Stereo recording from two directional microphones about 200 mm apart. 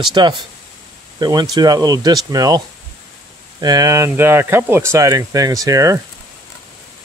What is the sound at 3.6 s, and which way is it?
Speech, 20° right (ahead or behind).